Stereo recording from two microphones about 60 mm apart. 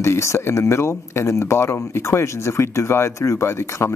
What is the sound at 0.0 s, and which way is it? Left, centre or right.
Speech, left.